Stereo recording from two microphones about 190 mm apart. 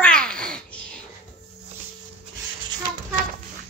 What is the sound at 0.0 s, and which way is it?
Babbling, 5° left (ahead or behind).